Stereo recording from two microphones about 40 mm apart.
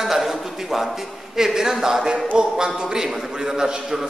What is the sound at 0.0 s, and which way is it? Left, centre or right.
A man's voice, centre.